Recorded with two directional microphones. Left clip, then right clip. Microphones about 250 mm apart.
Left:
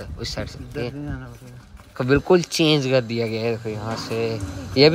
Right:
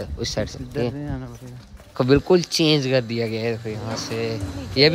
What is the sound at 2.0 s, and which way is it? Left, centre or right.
Speech, centre.